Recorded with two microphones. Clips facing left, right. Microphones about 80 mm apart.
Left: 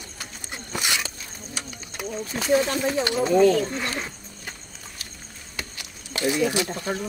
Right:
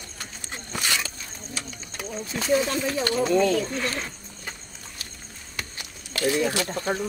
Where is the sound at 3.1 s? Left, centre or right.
Centre.